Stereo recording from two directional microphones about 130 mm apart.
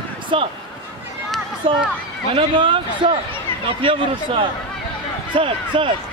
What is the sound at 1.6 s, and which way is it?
Speech, 45° right (ahead or behind).